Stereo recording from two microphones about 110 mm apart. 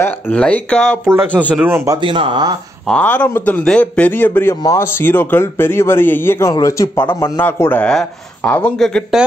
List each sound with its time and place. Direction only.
0.3 s speech: 10° left (ahead or behind)
1.1 s speech: 15° right (ahead or behind)
2.0 s speech: 50° right (ahead or behind)
2.9 s a man's voice: 10° left (ahead or behind)
8.7 s speech: 5° left (ahead or behind)